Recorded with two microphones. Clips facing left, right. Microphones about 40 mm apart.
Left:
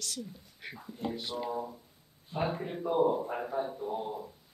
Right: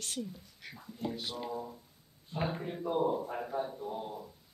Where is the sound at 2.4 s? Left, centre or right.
Centre.